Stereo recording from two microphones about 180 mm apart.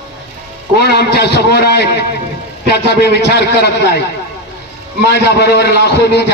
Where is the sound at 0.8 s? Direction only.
65° left (ahead or behind).